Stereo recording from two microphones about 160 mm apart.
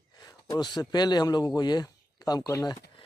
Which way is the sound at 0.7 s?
25° left (ahead or behind).